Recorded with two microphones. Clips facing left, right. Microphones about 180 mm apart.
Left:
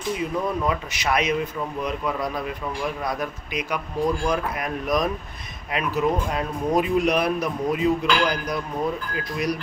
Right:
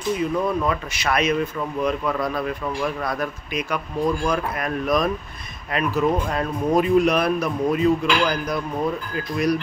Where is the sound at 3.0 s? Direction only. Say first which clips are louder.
Right 2 dB; 15° left (ahead or behind).